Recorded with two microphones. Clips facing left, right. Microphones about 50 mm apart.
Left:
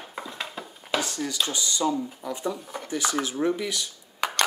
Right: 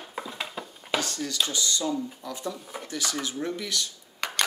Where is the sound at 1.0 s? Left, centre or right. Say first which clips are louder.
Left 1 dB; centre.